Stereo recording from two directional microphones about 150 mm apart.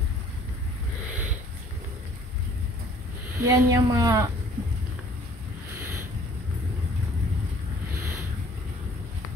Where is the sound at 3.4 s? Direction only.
20° right (ahead or behind).